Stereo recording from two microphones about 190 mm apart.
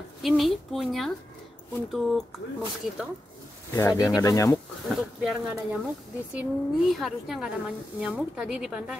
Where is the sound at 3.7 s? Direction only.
15° left (ahead or behind).